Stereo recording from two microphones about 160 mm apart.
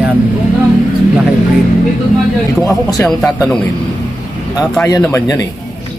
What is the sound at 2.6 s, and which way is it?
Speech, 25° left (ahead or behind).